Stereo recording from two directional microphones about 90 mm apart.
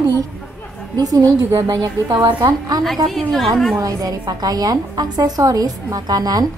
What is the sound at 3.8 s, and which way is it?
A woman's voice, 45° right (ahead or behind).